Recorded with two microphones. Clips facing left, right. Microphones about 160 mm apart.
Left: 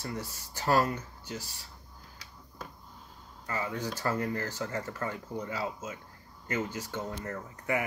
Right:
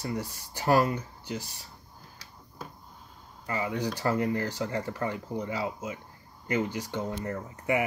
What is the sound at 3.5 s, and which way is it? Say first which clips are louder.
Speech: right 4 dB; 15° right (ahead or behind).